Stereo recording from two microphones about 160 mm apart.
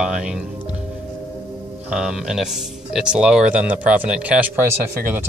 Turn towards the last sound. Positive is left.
turn(degrees=-15)  # may be behind; listen again after turning